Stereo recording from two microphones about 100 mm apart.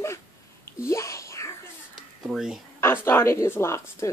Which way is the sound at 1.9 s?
5° right (ahead or behind).